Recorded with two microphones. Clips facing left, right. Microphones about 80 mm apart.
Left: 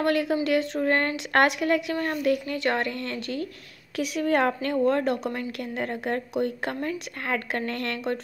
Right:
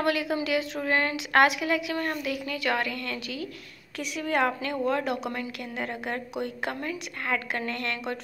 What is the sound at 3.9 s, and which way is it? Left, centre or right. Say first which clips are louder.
A woman's voice: left 4 dB; left.